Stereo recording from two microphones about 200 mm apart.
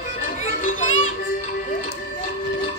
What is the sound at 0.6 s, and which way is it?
Music, 40° left (ahead or behind).